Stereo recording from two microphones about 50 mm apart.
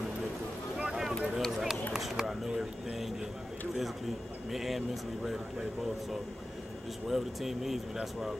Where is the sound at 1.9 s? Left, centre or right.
Centre.